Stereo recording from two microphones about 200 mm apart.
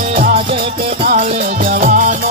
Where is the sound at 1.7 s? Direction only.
40° right (ahead or behind).